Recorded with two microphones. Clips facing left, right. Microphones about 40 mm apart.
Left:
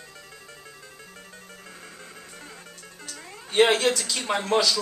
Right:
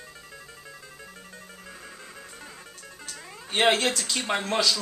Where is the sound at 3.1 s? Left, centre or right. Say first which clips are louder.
Right 1 dB; centre.